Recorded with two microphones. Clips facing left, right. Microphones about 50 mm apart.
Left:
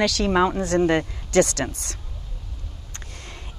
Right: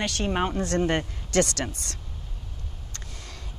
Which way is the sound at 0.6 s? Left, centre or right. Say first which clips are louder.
Left 4 dB; left.